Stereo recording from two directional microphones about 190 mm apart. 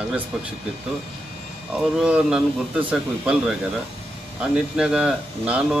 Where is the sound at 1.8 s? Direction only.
5° right (ahead or behind).